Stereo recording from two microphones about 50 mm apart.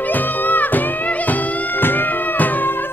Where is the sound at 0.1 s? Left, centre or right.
Left.